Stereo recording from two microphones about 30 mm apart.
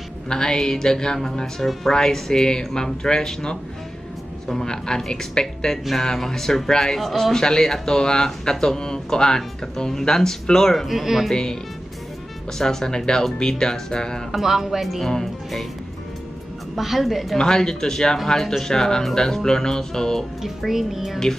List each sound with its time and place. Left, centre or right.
0.3 s speech: left
4.6 s speech: left
5.9 s speech: centre
7.0 s music: centre
7.3 s speech: left
10.9 s music: centre
12.5 s speech: centre
14.3 s speech: centre
16.7 s music: centre
17.4 s speech: left
20.4 s music: centre